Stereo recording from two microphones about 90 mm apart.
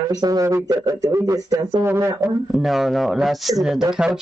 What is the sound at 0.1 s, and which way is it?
A man's voice, 45° right (ahead or behind).